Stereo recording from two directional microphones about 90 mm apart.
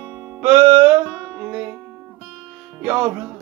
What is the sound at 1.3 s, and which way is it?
Music, 10° right (ahead or behind).